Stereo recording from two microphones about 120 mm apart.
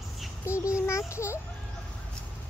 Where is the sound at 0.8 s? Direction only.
25° left (ahead or behind).